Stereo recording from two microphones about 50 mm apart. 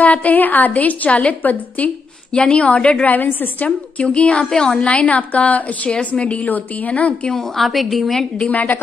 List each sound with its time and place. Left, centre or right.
0.0 s a woman's voice: left
2.3 s a woman's voice: left
3.1 s a woman's voice: left
4.0 s a woman's voice: left
7.3 s a woman's voice: centre
8.4 s a woman's voice: left